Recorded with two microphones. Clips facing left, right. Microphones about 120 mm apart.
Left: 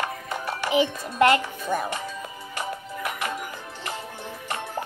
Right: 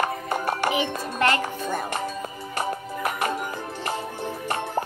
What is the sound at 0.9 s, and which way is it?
Music, 65° right (ahead or behind).